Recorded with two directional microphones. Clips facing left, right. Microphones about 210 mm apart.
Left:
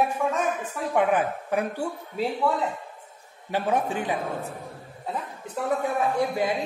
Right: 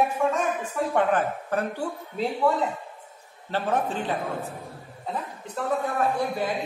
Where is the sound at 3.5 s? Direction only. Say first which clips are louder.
Left 1 dB; 10° left (ahead or behind).